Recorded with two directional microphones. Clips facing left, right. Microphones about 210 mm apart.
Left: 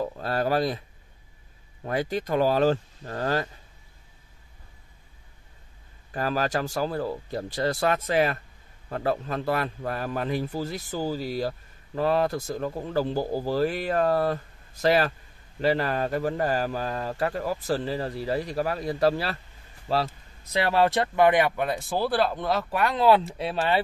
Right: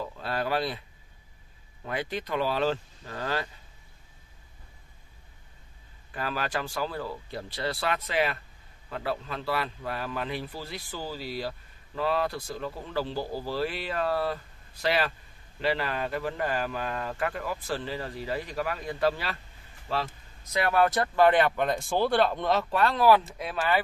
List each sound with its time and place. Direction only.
0.0 s speech: 45° left (ahead or behind)
1.9 s a man's voice: 45° left (ahead or behind)
6.1 s a man's voice: 40° left (ahead or behind)
20.4 s speech: 30° left (ahead or behind); by 22.9 s 10° left (ahead or behind)
22.9 s speech: 25° left (ahead or behind)